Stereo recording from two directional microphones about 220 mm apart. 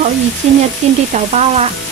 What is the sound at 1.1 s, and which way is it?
Speech, 30° right (ahead or behind).